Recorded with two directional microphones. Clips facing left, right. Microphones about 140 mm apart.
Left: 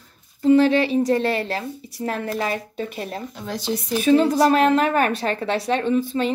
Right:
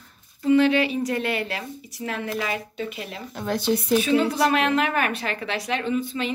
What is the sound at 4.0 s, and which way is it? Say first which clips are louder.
A woman's voice: left 10 dB; 40° left (ahead or behind).